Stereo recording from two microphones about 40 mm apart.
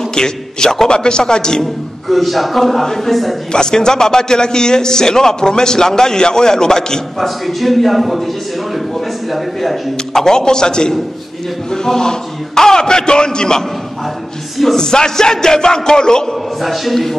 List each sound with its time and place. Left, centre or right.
0.1 s a man's voice: centre
2.0 s a man's voice: centre
3.5 s a man's voice: centre
7.2 s a man's voice: centre
9.3 s a man's voice: centre
14.8 s a man's voice: centre
16.6 s a man's voice: centre